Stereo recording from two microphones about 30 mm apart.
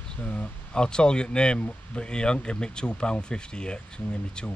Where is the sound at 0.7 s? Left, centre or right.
Left.